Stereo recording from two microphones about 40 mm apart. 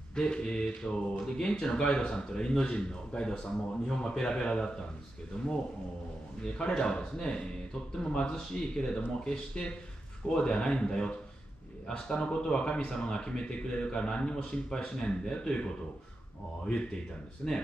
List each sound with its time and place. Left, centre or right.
0.1 s speech: centre
6.4 s speech: left
17.4 s speech: left